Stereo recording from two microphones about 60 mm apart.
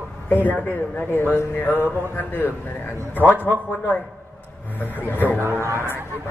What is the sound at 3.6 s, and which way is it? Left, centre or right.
Speech, left.